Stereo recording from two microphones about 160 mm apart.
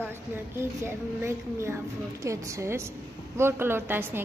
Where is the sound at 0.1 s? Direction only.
15° right (ahead or behind).